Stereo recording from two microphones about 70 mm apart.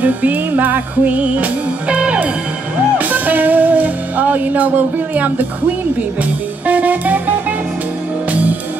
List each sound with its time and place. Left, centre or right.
0.0 s music: right
6.6 s music: right